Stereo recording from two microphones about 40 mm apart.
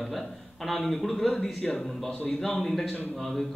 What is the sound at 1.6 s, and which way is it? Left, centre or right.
Speech, left.